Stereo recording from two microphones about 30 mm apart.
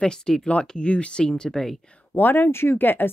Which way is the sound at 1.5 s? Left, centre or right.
Centre.